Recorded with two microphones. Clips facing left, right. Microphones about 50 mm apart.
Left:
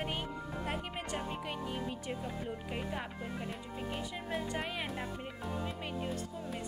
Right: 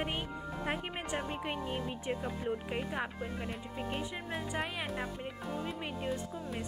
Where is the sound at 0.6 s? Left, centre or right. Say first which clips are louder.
Right 3 dB; centre.